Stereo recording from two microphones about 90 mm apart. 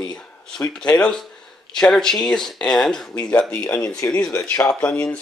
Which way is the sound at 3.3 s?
15° left (ahead or behind).